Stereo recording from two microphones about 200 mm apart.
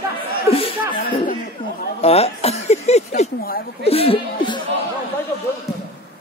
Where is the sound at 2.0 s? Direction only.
30° left (ahead or behind).